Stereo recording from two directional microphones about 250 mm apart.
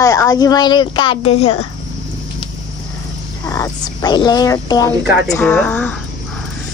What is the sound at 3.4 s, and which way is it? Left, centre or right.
Speech, centre.